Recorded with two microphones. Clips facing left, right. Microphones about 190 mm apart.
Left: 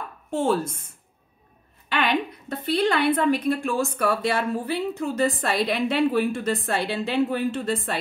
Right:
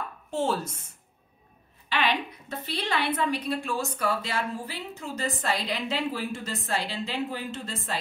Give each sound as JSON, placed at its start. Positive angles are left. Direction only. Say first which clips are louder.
{"t": 0.3, "sound": "a woman's voice", "louder": "left 5 dB", "side_deg": 55}
{"t": 1.9, "sound": "a woman's voice", "louder": "left 4 dB", "side_deg": 50}